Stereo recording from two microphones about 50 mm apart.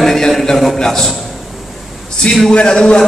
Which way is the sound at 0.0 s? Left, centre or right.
Centre.